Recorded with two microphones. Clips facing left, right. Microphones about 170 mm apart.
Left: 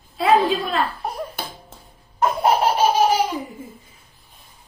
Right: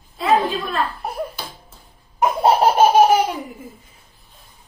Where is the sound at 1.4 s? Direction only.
55° left (ahead or behind).